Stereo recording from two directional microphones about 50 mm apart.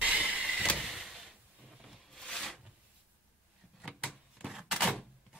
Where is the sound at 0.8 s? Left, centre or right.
Centre.